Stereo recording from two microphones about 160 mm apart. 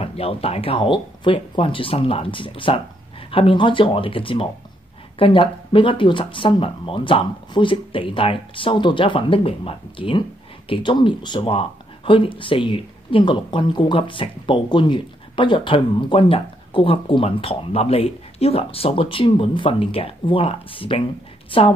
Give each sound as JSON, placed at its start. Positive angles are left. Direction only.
{"t": 0.0, "sound": "a woman's voice", "side_deg": 40}